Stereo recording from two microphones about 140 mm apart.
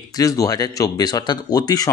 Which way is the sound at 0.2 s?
25° left (ahead or behind).